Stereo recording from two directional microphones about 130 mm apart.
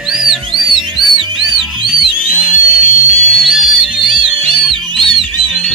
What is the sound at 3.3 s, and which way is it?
Music, centre (ahead or behind).